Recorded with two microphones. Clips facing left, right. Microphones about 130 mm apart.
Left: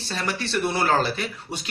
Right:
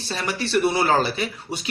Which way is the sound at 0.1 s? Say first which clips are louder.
Right 3 dB; 10° right (ahead or behind).